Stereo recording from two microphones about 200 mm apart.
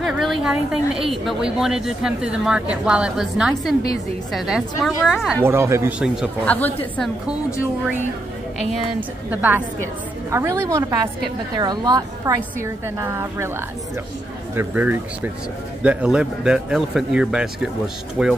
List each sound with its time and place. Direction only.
0.0 s a woman's voice: centre (ahead or behind)
5.4 s speech: 15° right (ahead or behind)
6.4 s a woman's voice: 5° left (ahead or behind)
9.3 s a woman's voice: 10° right (ahead or behind)
14.5 s a woman's voice: 10° right (ahead or behind)